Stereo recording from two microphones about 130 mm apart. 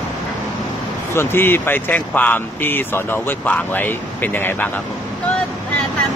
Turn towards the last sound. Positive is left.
turn(degrees=15)  # may be behind; listen again after turning